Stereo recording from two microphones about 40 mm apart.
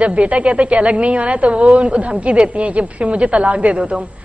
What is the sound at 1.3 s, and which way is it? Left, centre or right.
Speech, right.